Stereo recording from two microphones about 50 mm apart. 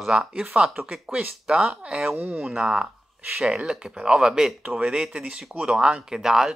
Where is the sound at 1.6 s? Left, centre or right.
Right.